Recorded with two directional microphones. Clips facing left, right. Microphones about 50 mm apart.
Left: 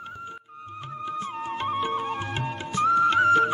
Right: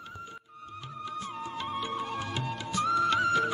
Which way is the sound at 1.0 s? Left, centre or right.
Left.